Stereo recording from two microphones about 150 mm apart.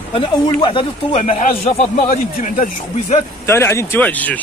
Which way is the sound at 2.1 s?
65° left (ahead or behind).